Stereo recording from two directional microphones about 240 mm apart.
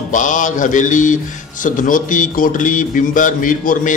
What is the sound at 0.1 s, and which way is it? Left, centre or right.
A man's voice, left.